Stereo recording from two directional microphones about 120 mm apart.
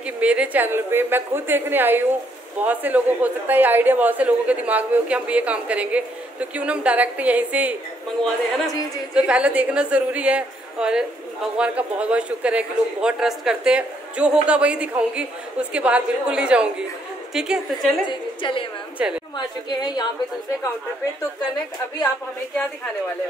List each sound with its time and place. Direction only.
0.0 s a woman's voice: 10° right (ahead or behind)
8.2 s a woman's voice: 5° left (ahead or behind)
9.1 s a woman's voice: 10° right (ahead or behind)
18.0 s a woman's voice: 45° left (ahead or behind)
18.9 s a woman's voice: 10° right (ahead or behind)
19.3 s a woman's voice: 35° left (ahead or behind)